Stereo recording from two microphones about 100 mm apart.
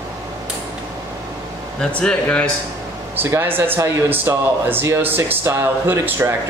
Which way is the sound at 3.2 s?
20° right (ahead or behind).